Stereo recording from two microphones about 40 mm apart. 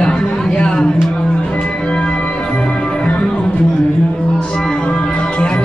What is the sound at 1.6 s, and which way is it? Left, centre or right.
Music, left.